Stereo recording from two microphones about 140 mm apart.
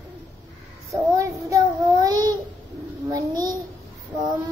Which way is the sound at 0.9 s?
25° right (ahead or behind).